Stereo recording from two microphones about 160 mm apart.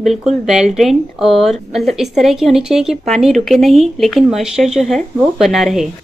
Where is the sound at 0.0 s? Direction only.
Centre (ahead or behind).